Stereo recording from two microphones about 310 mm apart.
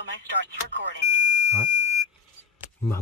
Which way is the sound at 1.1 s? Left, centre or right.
Left.